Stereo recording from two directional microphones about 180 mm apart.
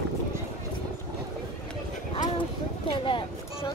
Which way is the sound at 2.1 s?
30° left (ahead or behind).